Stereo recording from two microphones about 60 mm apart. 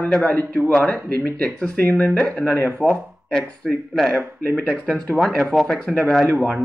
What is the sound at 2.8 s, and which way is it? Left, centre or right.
Speech, right.